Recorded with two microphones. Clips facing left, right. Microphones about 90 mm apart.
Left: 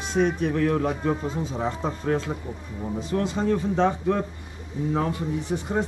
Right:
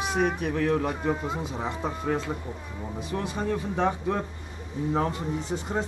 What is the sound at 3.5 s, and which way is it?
Speech, 10° right (ahead or behind).